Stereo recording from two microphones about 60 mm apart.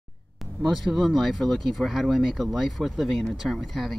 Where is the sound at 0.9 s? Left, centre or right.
Centre.